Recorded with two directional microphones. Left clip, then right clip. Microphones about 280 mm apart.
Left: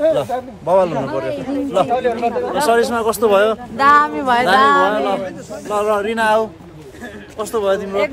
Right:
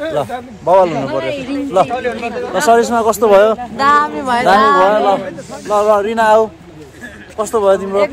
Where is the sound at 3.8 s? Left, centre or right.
Centre.